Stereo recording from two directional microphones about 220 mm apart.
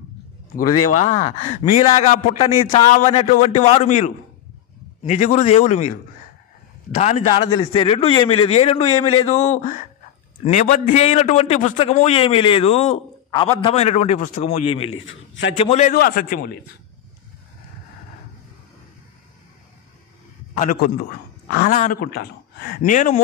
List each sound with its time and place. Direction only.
0.9 s a man's voice: 35° left (ahead or behind)
14.9 s a man's voice: 65° left (ahead or behind)
15.5 s a man's voice: 25° left (ahead or behind)
15.9 s a man's voice: 40° left (ahead or behind)
20.8 s speech: 40° left (ahead or behind)